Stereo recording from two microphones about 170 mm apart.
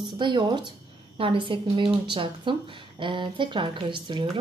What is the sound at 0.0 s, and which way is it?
A woman's voice, 25° right (ahead or behind).